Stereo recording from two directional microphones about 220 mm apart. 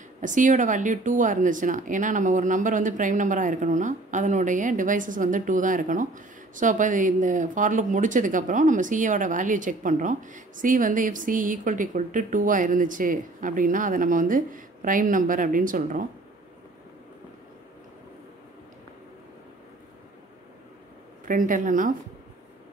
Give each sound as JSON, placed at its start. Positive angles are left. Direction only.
{"t": 0.2, "sound": "speech", "side_deg": -35}
{"t": 21.3, "sound": "speech", "side_deg": -40}